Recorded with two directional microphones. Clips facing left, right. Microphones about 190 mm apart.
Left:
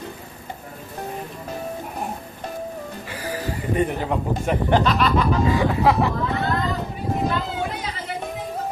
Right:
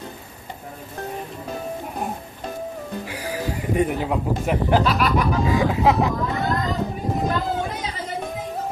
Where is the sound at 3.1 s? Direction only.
10° right (ahead or behind).